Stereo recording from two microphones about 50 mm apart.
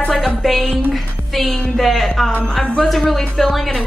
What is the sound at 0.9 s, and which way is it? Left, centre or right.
Music, centre.